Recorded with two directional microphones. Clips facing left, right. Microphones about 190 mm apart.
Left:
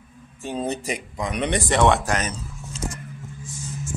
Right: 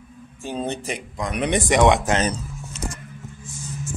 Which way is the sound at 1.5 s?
15° right (ahead or behind).